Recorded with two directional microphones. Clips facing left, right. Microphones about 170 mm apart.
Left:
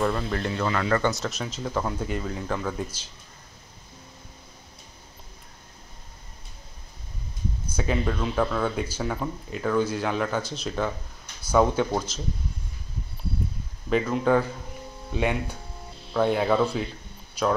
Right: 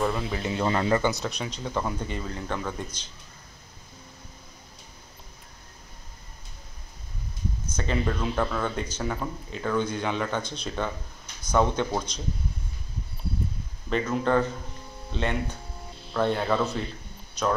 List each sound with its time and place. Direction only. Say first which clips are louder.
0.0 s speech: left 2 dB; centre (ahead or behind)
0.6 s speech: right 3 dB; 30° right (ahead or behind)
0.9 s speech: even; centre (ahead or behind)
7.6 s speech: left 2 dB; 10° left (ahead or behind)
14.0 s speech: even; 5° left (ahead or behind)